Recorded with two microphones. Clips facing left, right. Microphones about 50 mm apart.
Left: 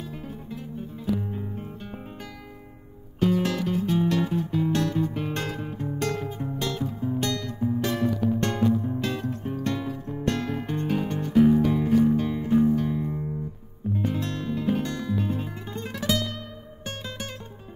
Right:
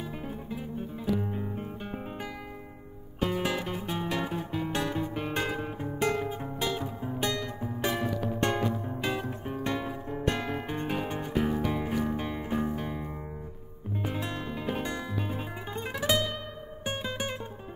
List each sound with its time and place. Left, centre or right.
0.1 s music: centre
3.2 s music: centre